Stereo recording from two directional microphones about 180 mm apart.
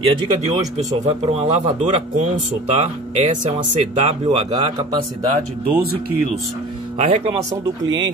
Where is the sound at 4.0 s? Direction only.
35° right (ahead or behind).